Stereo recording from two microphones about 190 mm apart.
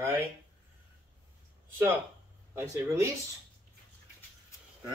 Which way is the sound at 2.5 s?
15° right (ahead or behind).